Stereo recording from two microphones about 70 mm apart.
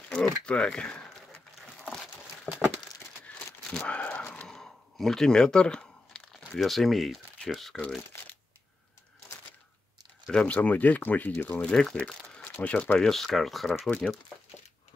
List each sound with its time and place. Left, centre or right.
0.1 s crumpling: centre
3.3 s a sound: centre
7.4 s speech: centre
8.1 s shuffling cards: left
10.3 s speech: centre
11.6 s speech: centre
13.1 s speech: centre
13.8 s speech: left